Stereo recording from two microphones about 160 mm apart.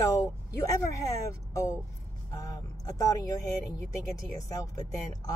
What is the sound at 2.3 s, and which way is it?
Vehicle, 20° left (ahead or behind).